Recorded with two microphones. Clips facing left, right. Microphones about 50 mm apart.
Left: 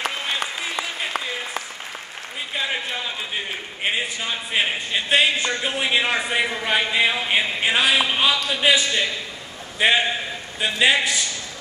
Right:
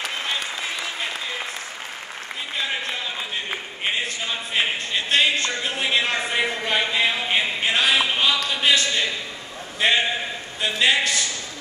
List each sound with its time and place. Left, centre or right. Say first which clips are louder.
4.3 s a man's voice: left 1 dB; centre